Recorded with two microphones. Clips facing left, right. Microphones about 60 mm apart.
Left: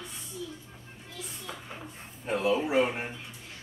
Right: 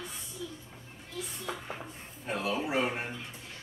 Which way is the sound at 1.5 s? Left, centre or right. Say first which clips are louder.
Right 4 dB; right.